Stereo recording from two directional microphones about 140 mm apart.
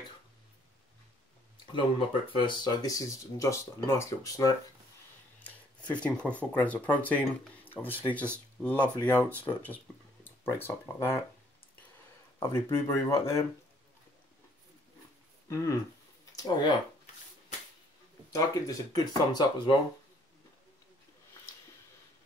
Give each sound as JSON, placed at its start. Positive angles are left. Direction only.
{"t": 1.7, "sound": "speech", "side_deg": 40}
{"t": 5.4, "sound": "speech", "side_deg": 10}
{"t": 12.4, "sound": "speech", "side_deg": 20}
{"t": 15.5, "sound": "speech", "side_deg": 20}
{"t": 18.3, "sound": "speech", "side_deg": 25}